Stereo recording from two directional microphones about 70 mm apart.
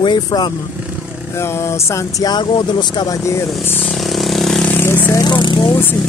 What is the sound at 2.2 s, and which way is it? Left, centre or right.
Speech, left.